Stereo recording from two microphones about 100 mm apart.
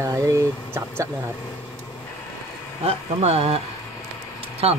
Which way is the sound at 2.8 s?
90° right.